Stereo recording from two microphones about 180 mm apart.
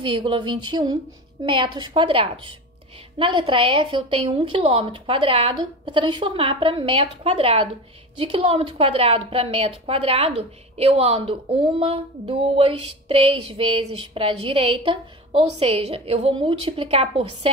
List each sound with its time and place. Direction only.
0.0 s a woman's voice: 30° right (ahead or behind)